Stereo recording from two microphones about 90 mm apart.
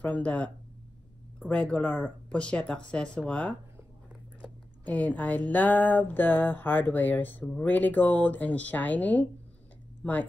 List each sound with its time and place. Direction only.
0.0 s speech: 15° left (ahead or behind)
1.5 s speech: 15° left (ahead or behind)